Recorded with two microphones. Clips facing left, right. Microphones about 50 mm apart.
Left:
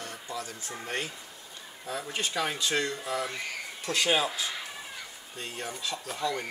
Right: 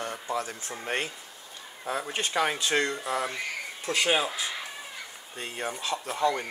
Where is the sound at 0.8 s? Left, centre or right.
Right.